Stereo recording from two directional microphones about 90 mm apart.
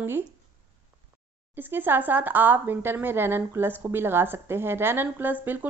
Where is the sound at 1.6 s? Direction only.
25° right (ahead or behind).